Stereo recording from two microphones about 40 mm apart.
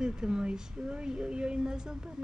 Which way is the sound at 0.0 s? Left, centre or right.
Right.